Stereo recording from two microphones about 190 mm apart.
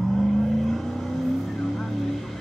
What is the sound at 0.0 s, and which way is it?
Vehicle, centre (ahead or behind).